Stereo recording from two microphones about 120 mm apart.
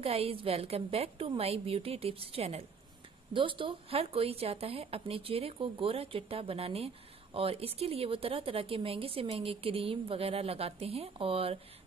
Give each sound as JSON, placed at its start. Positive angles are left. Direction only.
{"t": 0.0, "sound": "a woman's voice", "side_deg": -55}